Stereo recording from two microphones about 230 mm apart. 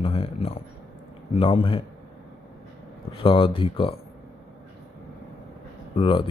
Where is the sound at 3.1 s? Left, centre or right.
Left.